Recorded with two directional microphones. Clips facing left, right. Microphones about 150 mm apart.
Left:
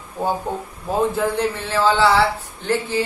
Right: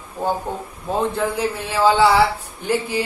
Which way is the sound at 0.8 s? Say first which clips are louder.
Left 1 dB; centre (ahead or behind).